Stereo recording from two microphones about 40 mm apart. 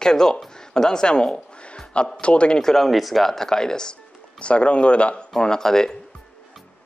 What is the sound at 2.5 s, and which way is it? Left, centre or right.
Speech, centre.